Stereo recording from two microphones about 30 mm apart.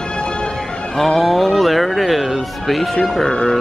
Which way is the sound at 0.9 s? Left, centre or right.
Centre.